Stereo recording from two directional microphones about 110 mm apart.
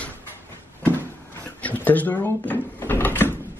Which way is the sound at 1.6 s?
15° left (ahead or behind).